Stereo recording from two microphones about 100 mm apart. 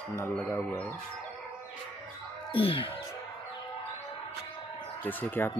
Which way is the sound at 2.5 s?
65° left (ahead or behind).